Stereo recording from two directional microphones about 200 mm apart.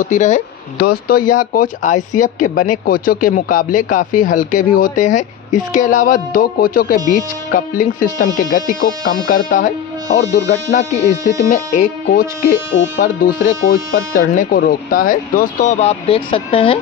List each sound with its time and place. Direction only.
0.0 s speech: 40° left (ahead or behind)
0.7 s speech: 50° left (ahead or behind); by 16.8 s 25° left (ahead or behind)